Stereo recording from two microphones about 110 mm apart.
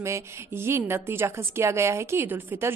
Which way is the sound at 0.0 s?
25° right (ahead or behind).